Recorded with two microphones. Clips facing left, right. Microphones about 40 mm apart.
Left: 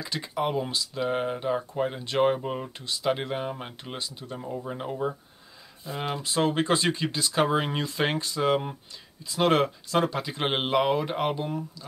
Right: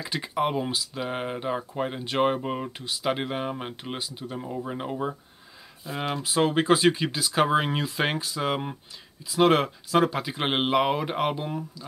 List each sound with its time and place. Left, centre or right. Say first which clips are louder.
0.0 s speech: right 2 dB; centre
5.9 s speech: right 1 dB; centre